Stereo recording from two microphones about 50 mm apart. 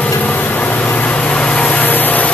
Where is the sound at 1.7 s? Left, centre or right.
Left.